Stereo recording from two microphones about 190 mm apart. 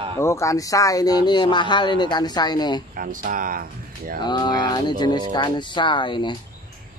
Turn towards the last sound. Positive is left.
turn(degrees=25)  # may be behind; listen again after turning